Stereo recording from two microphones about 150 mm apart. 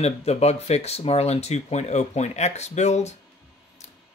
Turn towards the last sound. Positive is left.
turn(degrees=50)  # may be behind; listen again after turning